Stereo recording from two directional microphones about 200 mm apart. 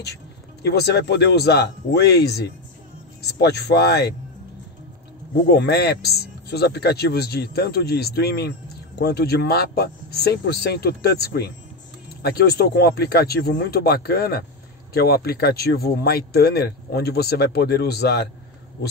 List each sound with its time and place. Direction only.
0.6 s speech: 55° left (ahead or behind)
5.5 s speech: 55° left (ahead or behind)